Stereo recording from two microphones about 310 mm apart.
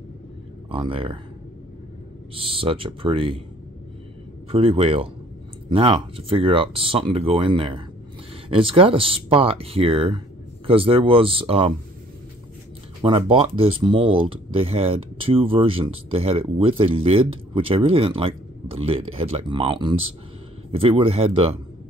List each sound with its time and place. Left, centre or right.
0.7 s speech: centre
2.3 s speech: centre
4.5 s speech: centre
13.0 s speech: centre